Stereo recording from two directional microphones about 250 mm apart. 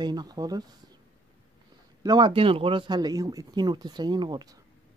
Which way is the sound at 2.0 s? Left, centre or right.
Centre.